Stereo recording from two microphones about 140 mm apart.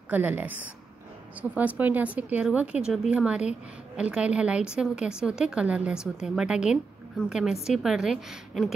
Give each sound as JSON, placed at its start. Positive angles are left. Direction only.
{"t": 0.1, "sound": "a woman's voice", "side_deg": -10}